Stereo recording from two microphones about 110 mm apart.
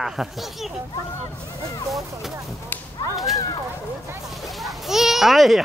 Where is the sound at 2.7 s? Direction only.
20° left (ahead or behind).